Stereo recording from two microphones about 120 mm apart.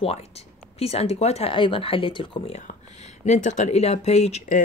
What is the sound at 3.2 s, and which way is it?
Speech, 90° left.